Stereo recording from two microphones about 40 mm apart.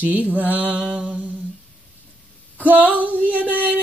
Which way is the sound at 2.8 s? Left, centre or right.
Right.